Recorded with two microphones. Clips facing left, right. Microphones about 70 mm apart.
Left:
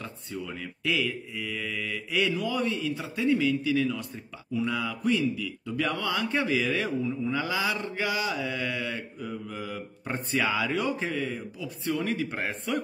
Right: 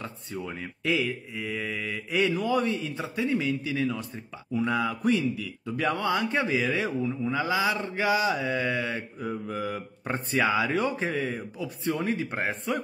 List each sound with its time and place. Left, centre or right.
0.0 s a man's voice: right
4.6 s a man's voice: right
9.5 s speech: right
10.0 s a man's voice: right